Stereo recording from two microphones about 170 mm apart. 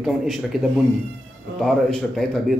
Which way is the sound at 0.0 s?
Centre (ahead or behind).